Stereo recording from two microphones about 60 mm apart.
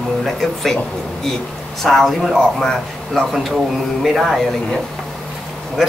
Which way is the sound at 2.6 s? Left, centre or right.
Centre.